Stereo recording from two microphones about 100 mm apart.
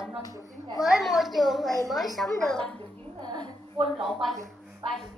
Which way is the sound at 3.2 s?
45° right (ahead or behind).